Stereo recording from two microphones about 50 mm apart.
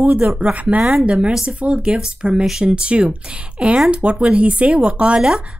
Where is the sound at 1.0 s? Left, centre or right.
Right.